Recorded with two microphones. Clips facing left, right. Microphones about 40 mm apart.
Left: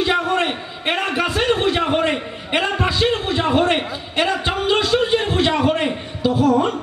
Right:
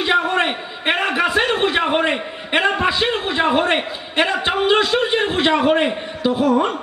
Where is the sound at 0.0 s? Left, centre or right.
Centre.